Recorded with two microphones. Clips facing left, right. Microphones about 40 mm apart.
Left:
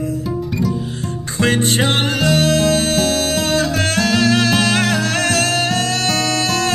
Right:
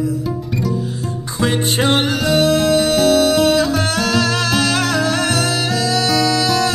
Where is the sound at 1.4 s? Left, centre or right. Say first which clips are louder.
Left 2 dB; left.